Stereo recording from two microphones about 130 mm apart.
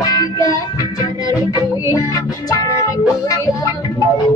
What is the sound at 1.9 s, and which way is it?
Music, 30° left (ahead or behind).